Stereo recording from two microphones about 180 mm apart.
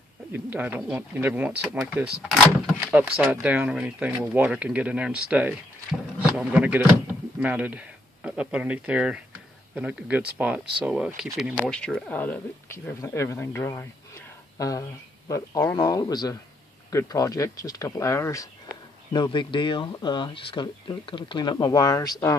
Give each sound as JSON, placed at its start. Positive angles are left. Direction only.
{"t": 0.3, "sound": "speech", "side_deg": -10}